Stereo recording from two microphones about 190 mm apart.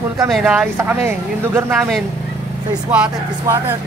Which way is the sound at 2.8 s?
10° right (ahead or behind).